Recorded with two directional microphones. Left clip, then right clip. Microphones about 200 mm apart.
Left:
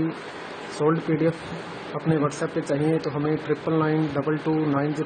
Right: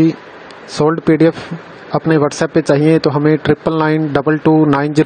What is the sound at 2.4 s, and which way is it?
Speech, 45° right (ahead or behind).